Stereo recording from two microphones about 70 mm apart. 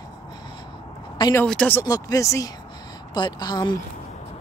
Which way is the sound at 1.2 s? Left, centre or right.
Left.